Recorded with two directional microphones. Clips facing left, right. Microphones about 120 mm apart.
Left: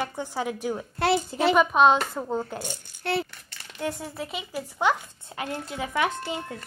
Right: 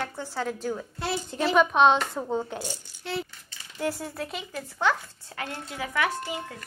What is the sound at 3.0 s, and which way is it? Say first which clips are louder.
Coin: left 5 dB; 65° left (ahead or behind).